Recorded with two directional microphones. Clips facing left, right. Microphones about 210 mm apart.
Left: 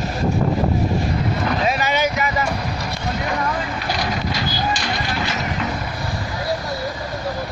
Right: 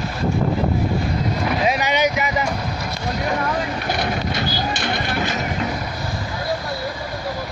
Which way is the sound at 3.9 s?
55° right (ahead or behind).